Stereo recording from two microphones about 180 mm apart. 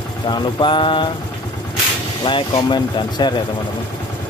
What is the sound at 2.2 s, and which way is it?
Speech, 25° left (ahead or behind).